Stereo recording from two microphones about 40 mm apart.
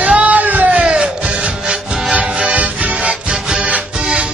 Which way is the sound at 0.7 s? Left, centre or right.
Right.